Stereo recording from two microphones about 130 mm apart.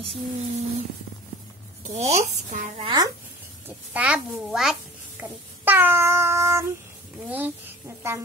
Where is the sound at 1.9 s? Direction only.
60° right (ahead or behind).